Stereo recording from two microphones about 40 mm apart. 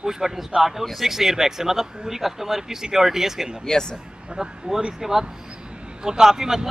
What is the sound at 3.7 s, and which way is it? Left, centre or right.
Speech, centre.